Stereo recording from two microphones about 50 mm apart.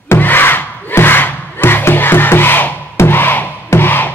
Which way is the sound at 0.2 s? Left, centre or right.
Left.